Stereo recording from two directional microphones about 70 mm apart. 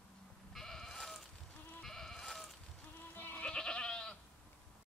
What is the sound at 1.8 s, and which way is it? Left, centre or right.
Goat, centre.